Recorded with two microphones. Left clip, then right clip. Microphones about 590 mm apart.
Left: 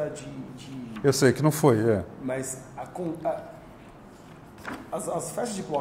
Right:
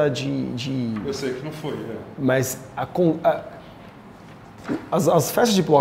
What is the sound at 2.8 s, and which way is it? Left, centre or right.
Speech, right.